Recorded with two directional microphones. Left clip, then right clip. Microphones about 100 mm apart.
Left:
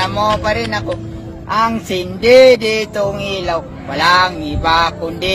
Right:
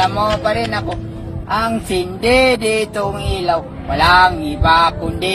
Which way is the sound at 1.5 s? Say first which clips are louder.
Left 2 dB; 40° left (ahead or behind).